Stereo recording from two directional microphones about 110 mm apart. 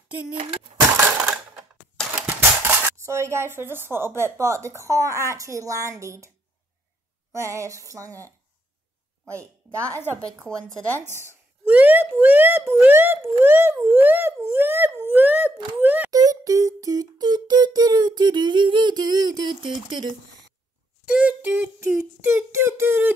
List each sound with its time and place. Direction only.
1.1 s a sound: 10° right (ahead or behind)
2.1 s speech: 15° right (ahead or behind)
7.3 s a sound: 25° right (ahead or behind)
9.2 s speech: 25° right (ahead or behind)
9.9 s a woman's voice: 20° left (ahead or behind)
11.6 s speech: 15° right (ahead or behind)
16.1 s music: 35° right (ahead or behind)
21.0 s speech: 10° right (ahead or behind)
22.2 s a sound: 25° right (ahead or behind)